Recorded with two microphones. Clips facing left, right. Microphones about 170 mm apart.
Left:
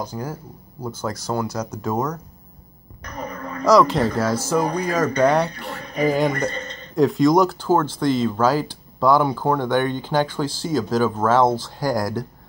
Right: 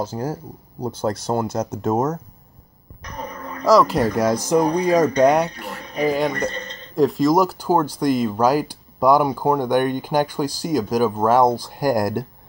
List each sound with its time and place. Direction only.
0.0 s speech: 30° right (ahead or behind)
3.6 s speech: centre (ahead or behind); by 12.3 s 20° right (ahead or behind)